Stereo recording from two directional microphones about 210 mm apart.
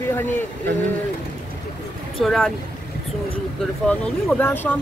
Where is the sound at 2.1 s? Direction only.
Centre (ahead or behind).